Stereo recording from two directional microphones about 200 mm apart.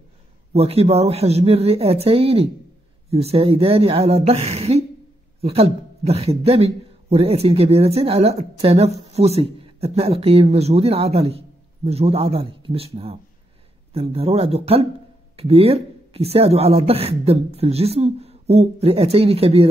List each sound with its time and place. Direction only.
0.5 s a man's voice: 30° right (ahead or behind)